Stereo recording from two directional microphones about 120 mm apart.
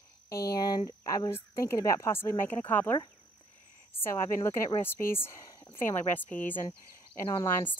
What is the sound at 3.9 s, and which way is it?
Speech, 20° left (ahead or behind).